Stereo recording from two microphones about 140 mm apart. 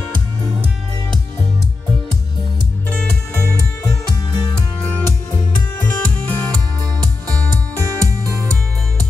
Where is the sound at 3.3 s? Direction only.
20° left (ahead or behind).